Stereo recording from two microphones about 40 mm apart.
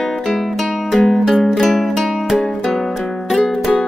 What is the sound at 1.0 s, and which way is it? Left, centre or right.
Music, centre.